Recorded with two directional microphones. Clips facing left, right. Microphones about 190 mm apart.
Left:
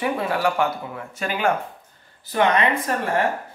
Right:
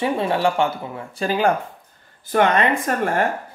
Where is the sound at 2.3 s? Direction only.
50° right (ahead or behind).